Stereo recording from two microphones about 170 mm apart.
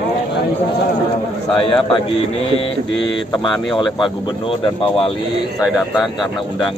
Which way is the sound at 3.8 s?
25° left (ahead or behind).